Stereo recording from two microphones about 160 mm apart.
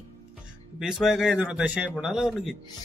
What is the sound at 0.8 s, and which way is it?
Speech, centre (ahead or behind).